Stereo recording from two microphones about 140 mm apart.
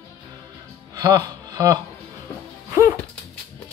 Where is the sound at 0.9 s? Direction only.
25° right (ahead or behind).